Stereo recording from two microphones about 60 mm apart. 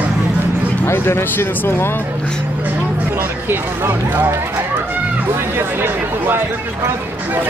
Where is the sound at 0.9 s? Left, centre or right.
Left.